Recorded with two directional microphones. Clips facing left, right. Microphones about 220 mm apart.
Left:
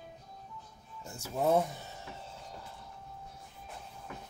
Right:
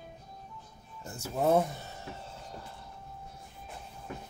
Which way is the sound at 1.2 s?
10° right (ahead or behind).